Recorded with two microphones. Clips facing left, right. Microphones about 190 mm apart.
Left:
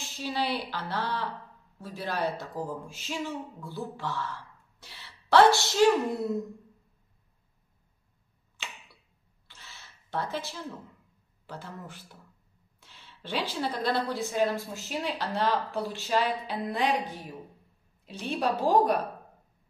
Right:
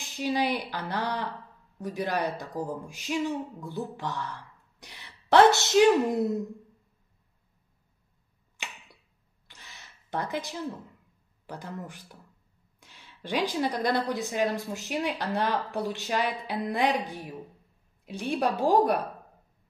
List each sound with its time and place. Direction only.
0.0 s speech: 15° right (ahead or behind)
9.5 s a sound: 15° right (ahead or behind)
11.4 s speech: 15° right (ahead or behind)